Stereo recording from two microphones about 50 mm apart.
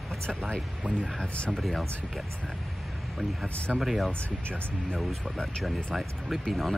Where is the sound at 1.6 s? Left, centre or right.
Centre.